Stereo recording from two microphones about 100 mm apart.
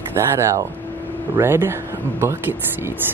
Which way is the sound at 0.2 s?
30° right (ahead or behind).